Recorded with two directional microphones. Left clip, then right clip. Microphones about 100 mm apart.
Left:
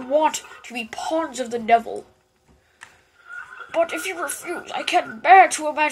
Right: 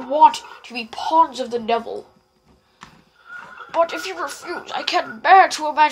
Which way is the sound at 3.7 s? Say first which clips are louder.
Right 2 dB; 45° left (ahead or behind).